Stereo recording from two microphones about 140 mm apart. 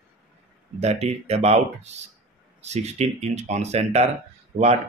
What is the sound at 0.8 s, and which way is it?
Speech, 50° right (ahead or behind).